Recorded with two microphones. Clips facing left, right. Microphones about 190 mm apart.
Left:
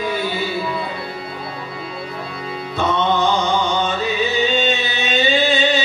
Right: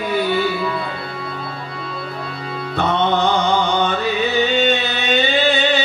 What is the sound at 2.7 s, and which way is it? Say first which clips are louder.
Music: right 1 dB; 60° right (ahead or behind).